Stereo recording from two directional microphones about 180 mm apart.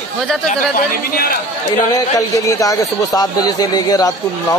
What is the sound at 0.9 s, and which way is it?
Speech, 55° left (ahead or behind).